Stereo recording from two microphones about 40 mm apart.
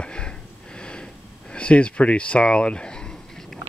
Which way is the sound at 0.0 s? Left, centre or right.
Left.